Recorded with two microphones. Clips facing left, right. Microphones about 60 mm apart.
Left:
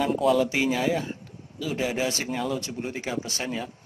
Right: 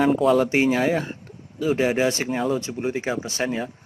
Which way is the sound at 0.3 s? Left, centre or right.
Right.